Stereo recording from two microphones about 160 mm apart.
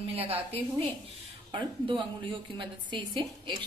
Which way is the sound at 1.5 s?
30° right (ahead or behind).